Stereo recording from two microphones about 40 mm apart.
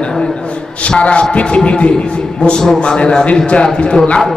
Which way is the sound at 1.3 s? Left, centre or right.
Left.